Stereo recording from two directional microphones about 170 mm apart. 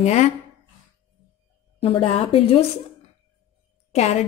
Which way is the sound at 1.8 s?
35° left (ahead or behind).